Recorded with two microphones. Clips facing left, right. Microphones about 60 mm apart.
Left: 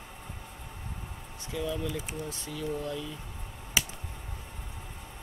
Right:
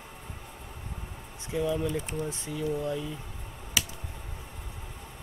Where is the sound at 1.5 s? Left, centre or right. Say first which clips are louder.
Right 4 dB; right.